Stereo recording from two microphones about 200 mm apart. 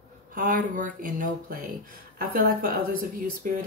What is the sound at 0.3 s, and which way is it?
Speech, 45° right (ahead or behind).